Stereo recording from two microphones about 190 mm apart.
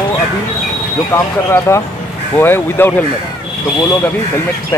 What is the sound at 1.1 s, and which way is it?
Speech, 15° left (ahead or behind).